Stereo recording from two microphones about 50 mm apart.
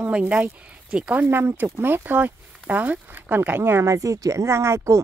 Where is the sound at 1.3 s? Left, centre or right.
Right.